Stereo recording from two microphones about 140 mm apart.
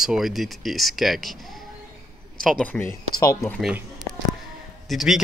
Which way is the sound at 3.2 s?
20° left (ahead or behind).